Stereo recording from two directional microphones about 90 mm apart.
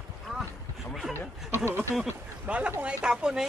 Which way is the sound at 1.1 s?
30° right (ahead or behind).